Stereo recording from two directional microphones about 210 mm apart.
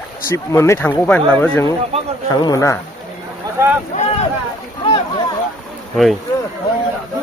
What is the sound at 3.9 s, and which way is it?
Speech, 35° left (ahead or behind).